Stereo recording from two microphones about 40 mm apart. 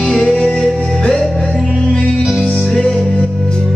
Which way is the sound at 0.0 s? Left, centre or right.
Centre.